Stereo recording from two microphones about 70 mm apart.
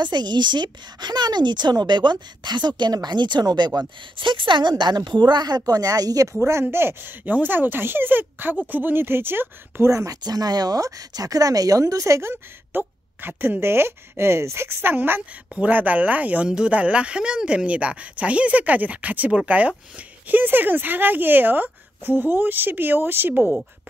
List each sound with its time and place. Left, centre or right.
0.0 s a woman's voice: right
6.6 s speech: right
9.8 s speech: right
10.2 s speech: right
15.5 s speech: right